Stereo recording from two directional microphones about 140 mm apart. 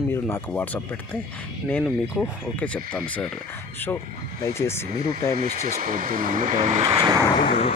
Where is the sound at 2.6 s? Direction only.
10° left (ahead or behind).